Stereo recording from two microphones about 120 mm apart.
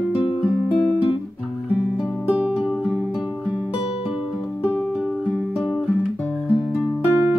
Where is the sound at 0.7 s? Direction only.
10° left (ahead or behind).